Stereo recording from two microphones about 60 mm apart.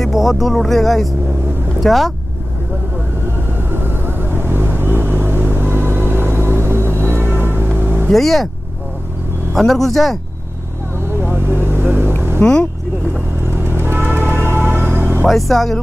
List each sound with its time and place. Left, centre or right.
0.0 s speech: centre
3.7 s vehicle: right
8.1 s speech: centre
9.5 s speech: centre
11.1 s vehicle: right
12.4 s speech: centre
13.4 s music: right
15.2 s speech: centre